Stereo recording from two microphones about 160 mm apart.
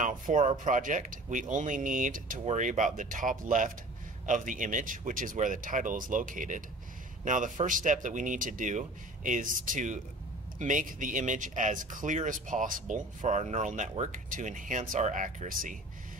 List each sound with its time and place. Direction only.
0.0 s speech: 50° right (ahead or behind)